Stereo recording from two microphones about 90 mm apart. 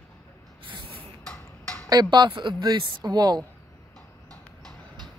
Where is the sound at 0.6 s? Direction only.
70° right (ahead or behind).